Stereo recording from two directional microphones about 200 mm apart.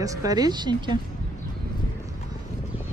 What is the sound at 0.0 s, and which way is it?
Speech, 15° right (ahead or behind).